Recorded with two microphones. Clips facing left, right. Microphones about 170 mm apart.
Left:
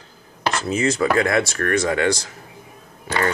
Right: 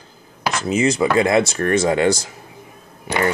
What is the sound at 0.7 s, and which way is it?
Speech, 20° right (ahead or behind).